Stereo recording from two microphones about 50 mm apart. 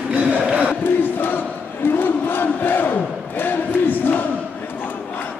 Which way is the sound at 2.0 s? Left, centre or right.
Left.